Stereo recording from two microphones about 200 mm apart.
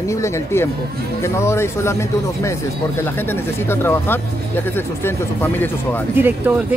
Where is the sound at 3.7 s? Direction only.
10° left (ahead or behind).